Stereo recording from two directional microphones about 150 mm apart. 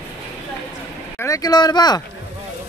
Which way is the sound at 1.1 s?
20° left (ahead or behind).